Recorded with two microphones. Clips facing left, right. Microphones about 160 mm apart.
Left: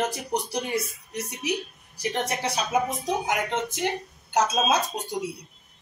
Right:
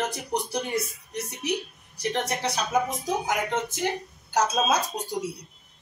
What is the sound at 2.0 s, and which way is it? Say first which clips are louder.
A man's voice: even; 5° left (ahead or behind).